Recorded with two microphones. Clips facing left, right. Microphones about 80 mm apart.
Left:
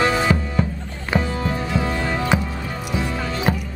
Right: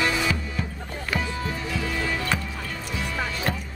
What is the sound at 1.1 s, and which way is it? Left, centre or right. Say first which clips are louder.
Music: left 7 dB; left.